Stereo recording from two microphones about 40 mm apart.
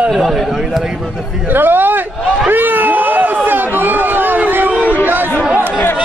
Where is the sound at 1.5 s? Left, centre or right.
Right.